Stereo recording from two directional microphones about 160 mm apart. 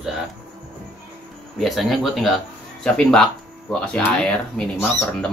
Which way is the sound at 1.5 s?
Centre (ahead or behind).